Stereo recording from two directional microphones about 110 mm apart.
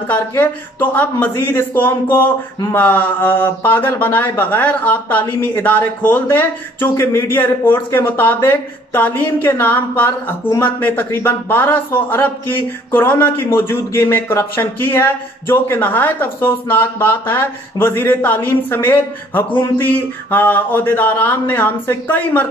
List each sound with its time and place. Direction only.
0.1 s speech: 15° left (ahead or behind)